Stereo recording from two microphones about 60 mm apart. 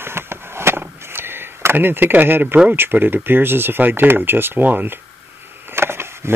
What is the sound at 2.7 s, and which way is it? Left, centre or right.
Speech, right.